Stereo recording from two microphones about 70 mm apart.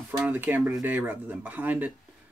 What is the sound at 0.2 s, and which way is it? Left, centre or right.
Speech, right.